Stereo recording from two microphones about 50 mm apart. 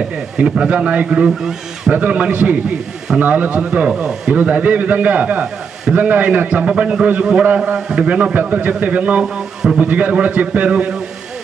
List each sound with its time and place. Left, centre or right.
0.4 s a man's voice: right
8.4 s a man's voice: right
9.2 s speech: centre
9.8 s a man's voice: right